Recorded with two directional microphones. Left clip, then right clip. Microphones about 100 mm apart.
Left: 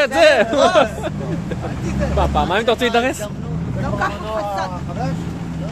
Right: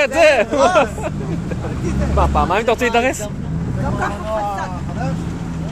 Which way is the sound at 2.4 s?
50° left (ahead or behind).